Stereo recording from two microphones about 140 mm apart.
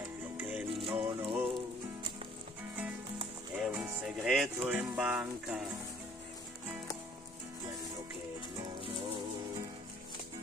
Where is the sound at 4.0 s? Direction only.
5° right (ahead or behind).